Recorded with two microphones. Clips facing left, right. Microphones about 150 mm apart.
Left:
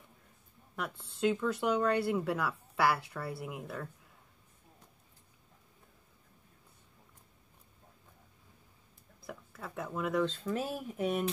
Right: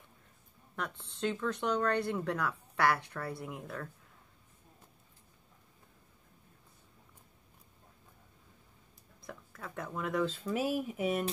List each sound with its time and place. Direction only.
0.7 s speech: 5° left (ahead or behind)
9.2 s a sound: 5° left (ahead or behind)
10.5 s speech: 10° right (ahead or behind)